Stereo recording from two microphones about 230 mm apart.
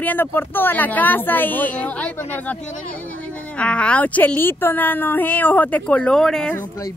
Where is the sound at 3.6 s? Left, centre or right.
Centre.